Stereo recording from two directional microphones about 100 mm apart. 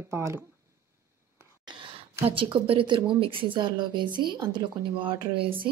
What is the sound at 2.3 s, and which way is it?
Speech, 60° right (ahead or behind).